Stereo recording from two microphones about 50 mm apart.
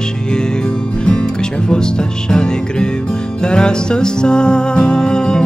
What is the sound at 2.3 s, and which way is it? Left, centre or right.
Music, centre.